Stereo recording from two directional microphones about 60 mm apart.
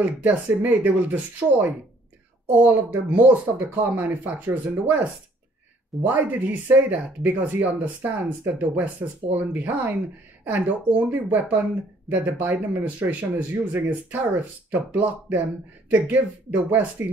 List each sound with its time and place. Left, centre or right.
0.0 s speech: right
6.0 s speech: right